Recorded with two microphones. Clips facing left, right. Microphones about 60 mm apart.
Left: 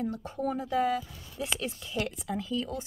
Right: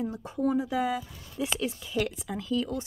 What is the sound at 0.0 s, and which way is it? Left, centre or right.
Speech, centre.